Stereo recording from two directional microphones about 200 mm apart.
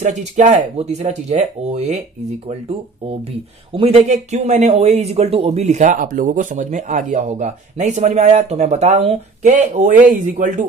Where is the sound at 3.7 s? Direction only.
30° right (ahead or behind).